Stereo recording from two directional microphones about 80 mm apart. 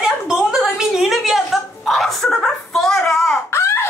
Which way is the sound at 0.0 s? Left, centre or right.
Centre.